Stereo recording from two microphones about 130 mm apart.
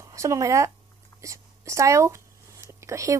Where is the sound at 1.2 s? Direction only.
25° right (ahead or behind).